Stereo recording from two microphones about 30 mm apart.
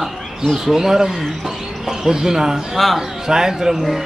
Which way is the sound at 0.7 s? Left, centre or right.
Centre.